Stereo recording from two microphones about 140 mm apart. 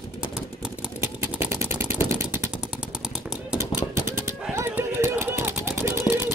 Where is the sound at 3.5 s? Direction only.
20° right (ahead or behind).